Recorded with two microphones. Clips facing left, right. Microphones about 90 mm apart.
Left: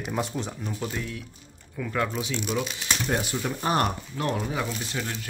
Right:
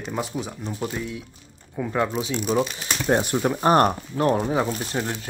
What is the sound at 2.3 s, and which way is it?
Speech, 40° right (ahead or behind).